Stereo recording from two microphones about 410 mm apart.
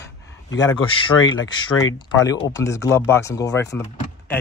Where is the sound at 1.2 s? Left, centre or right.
Left.